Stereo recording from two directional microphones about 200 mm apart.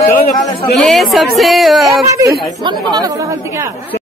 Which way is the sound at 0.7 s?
Centre (ahead or behind).